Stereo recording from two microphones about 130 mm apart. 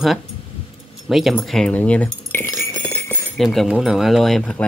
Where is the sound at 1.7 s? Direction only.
10° left (ahead or behind).